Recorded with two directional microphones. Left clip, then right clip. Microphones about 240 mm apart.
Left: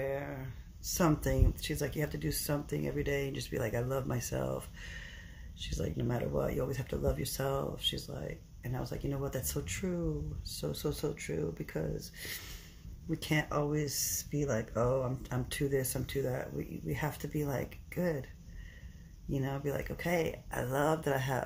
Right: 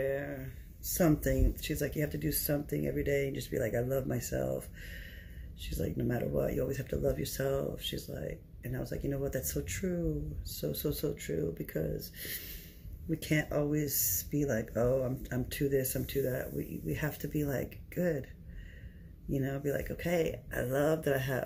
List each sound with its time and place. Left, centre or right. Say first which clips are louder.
0.0 s a sound: right 3 dB; centre
0.9 s speech: right 2 dB; centre
19.3 s speech: right 2 dB; centre